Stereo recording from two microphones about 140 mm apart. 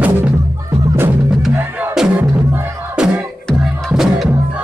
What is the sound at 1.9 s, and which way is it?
Music, 5° right (ahead or behind).